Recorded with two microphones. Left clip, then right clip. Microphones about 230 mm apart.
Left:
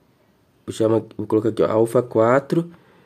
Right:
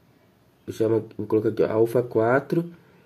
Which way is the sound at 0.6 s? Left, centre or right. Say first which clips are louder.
Left 4 dB; left.